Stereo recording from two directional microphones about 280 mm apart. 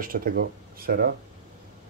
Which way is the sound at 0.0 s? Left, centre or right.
Right.